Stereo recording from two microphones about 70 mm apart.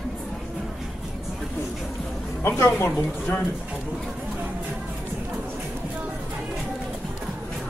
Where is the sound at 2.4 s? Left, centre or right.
Left.